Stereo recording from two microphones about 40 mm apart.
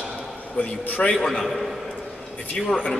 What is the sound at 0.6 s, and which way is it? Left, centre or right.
Speech, left.